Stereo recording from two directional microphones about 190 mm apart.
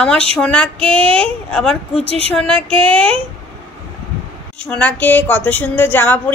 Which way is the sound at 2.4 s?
5° left (ahead or behind).